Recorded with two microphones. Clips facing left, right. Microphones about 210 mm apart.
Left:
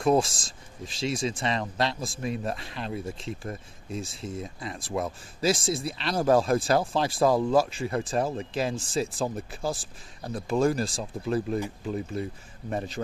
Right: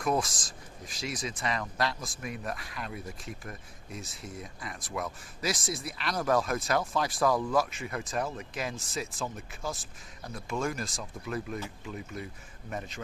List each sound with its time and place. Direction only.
0.0 s speech: 30° left (ahead or behind)